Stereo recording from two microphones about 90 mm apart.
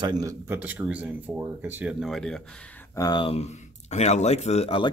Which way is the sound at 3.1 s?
65° left (ahead or behind).